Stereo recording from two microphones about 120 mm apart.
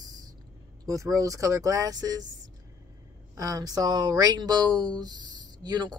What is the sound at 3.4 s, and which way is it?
Speech, 30° right (ahead or behind).